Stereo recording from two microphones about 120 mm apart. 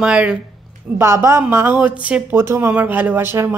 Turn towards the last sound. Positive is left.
turn(degrees=-20)  # may be behind; listen again after turning